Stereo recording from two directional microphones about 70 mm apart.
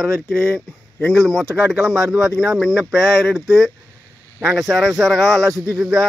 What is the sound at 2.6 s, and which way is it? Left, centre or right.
Speech, centre.